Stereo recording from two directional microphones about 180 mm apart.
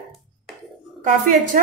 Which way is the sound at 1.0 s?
45° right (ahead or behind).